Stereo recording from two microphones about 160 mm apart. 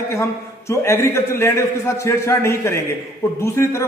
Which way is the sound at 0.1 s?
15° left (ahead or behind).